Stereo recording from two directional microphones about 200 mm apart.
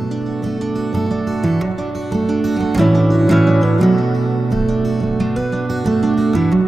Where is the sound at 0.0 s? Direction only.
Centre (ahead or behind).